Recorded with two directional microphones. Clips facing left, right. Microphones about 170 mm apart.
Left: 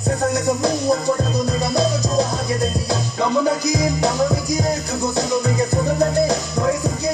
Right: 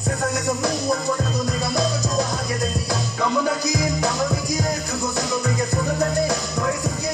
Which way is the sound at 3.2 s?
30° left (ahead or behind).